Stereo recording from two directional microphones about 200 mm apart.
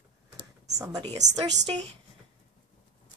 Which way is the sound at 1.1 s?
20° right (ahead or behind).